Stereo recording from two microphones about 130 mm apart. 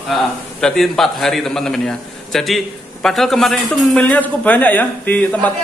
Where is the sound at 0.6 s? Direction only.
5° left (ahead or behind).